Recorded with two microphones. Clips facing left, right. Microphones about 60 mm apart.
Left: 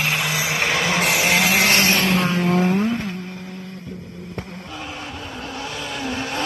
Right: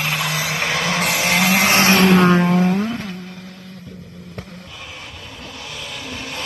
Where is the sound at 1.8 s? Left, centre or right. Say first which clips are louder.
Right 5 dB; right.